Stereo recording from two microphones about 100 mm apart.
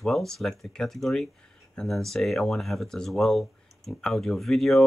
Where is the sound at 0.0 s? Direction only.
Centre (ahead or behind).